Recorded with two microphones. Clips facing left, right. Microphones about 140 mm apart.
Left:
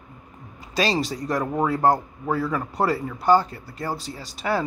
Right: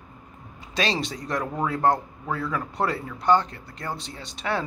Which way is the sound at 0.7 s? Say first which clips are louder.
Left 3 dB; 5° left (ahead or behind).